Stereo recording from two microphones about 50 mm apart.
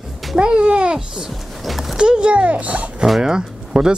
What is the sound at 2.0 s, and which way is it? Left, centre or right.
Speech, centre.